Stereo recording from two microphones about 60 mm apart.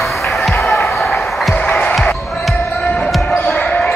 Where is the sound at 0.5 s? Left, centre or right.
Left.